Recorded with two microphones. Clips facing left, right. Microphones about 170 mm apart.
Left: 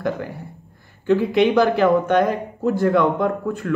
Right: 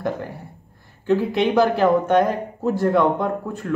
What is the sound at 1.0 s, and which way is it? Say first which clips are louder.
Speech: left 3 dB; centre (ahead or behind).